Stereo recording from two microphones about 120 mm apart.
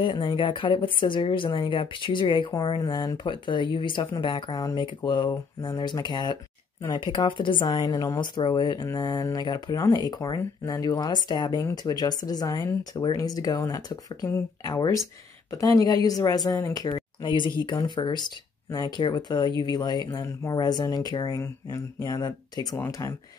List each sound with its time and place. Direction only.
0.0 s speech: 40° left (ahead or behind)
8.8 s speech: 30° left (ahead or behind)
21.4 s speech: 20° left (ahead or behind)
22.0 s speech: 35° left (ahead or behind)